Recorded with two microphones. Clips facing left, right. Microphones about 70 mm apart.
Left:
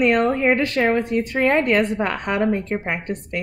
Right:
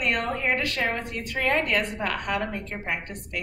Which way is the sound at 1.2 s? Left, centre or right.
Left.